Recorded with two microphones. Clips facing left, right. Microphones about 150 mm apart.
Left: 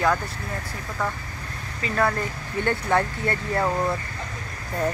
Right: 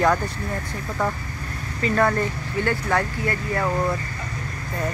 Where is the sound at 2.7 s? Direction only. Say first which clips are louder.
Left 2 dB; 20° left (ahead or behind).